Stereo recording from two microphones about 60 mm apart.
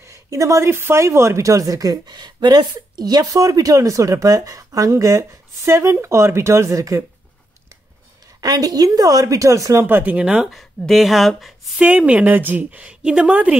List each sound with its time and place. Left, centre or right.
0.0 s a sound: right
0.7 s speech: right
1.0 s speech: right
3.0 s speech: right
8.4 s speech: right
9.8 s speech: right
10.0 s speech: centre
10.4 s speech: centre
12.0 s speech: centre
12.3 s speech: right